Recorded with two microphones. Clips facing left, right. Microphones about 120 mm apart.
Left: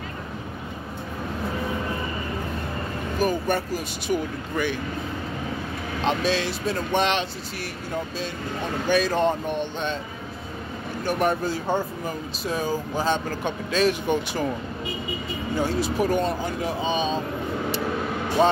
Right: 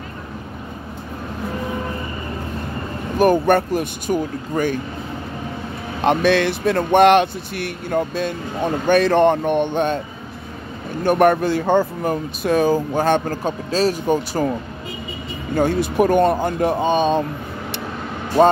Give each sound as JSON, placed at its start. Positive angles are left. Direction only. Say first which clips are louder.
{"t": 3.2, "sound": "speech", "louder": "right 9 dB", "side_deg": -60}
{"t": 5.9, "sound": "speech", "louder": "right 8 dB", "side_deg": -60}
{"t": 11.1, "sound": "speech", "louder": "right 9 dB", "side_deg": -60}
{"t": 13.4, "sound": "speech", "louder": "right 3 dB", "side_deg": -35}
{"t": 15.5, "sound": "speech", "louder": "right 7 dB", "side_deg": -55}